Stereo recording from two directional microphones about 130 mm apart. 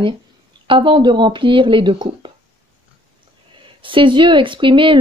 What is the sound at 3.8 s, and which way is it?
A woman's voice, 40° right (ahead or behind).